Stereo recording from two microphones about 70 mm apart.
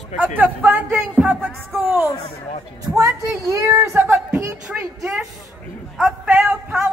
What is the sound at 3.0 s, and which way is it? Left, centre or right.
Speech, right.